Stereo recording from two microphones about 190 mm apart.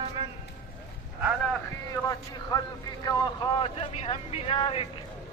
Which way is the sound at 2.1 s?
20° left (ahead or behind).